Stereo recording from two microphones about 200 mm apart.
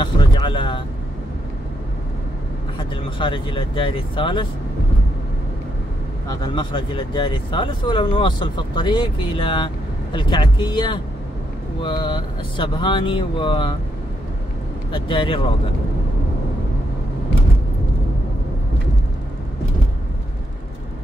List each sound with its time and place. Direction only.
0.0 s a sound: 25° left (ahead or behind)
3.2 s speech: 25° left (ahead or behind)
6.2 s speech: 20° left (ahead or behind)
14.9 s speech: 25° left (ahead or behind)